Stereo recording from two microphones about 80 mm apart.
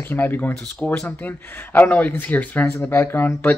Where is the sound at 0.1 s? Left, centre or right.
Left.